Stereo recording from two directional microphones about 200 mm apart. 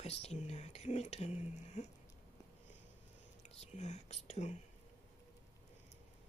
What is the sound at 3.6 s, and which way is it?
Speech, 35° left (ahead or behind).